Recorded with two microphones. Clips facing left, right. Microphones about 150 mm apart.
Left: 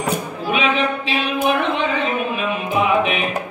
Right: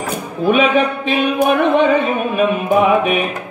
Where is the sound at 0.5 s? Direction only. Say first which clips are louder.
Right 6 dB; 50° right (ahead or behind).